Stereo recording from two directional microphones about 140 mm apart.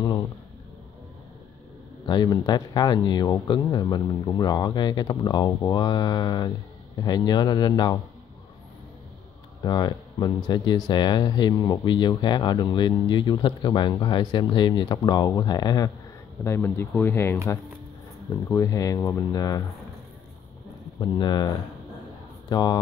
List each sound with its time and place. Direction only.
2.0 s speech: 30° left (ahead or behind)
9.6 s speech: 30° left (ahead or behind)
16.4 s speech: 15° left (ahead or behind)
18.5 s speech: 25° left (ahead or behind)
21.0 s speech: 30° left (ahead or behind)
22.5 s speech: 30° left (ahead or behind)